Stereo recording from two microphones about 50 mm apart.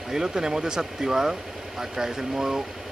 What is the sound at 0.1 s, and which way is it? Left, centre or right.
Speech, centre.